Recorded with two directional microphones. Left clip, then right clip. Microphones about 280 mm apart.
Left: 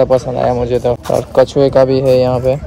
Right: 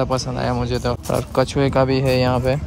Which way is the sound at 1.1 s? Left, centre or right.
Right.